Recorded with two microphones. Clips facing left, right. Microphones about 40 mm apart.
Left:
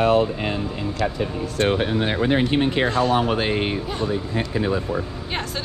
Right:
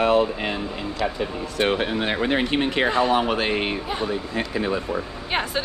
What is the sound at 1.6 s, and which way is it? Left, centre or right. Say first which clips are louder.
Speech: left 1 dB; right.